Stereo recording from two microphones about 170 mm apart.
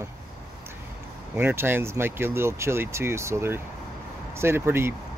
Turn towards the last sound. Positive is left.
turn(degrees=-15)  # may be behind; listen again after turning